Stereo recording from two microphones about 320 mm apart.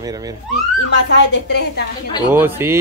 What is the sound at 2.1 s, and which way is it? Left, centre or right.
Speech, centre.